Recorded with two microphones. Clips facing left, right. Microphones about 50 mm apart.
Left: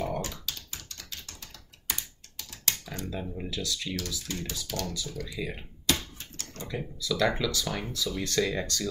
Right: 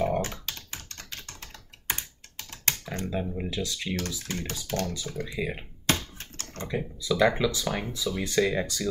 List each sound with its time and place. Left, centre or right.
0.0 s computer keyboard: right
2.8 s a sound: right
3.1 s speech: centre
4.3 s speech: right
5.9 s typing: right
6.7 s speech: centre